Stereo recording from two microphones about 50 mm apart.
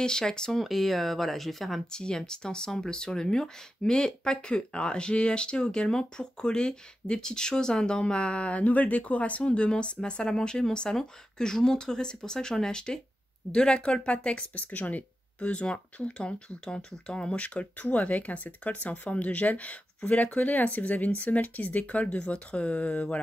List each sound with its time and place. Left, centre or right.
0.0 s speech: centre
0.6 s speech: centre
1.9 s speech: centre
17.4 s speech: left